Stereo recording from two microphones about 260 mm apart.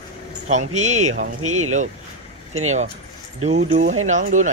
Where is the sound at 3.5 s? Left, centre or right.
Right.